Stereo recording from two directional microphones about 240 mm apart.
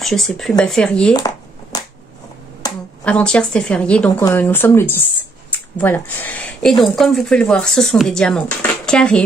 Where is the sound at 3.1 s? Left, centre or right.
Centre.